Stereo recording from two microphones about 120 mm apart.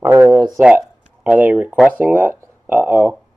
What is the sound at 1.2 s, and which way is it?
A man's voice, 10° right (ahead or behind).